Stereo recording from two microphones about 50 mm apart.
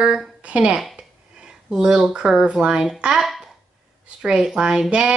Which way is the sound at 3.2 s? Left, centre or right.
Centre.